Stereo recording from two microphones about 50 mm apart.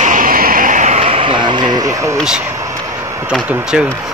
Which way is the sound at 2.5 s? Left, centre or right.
Right.